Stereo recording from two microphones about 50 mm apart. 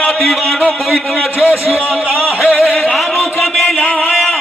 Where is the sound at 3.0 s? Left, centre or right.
Centre.